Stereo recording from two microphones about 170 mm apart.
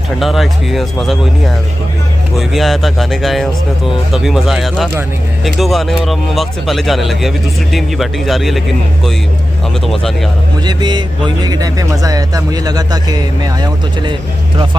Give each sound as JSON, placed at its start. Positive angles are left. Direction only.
{"t": 0.2, "sound": "speech", "side_deg": 0}
{"t": 2.3, "sound": "speech", "side_deg": 0}
{"t": 10.6, "sound": "speech", "side_deg": -25}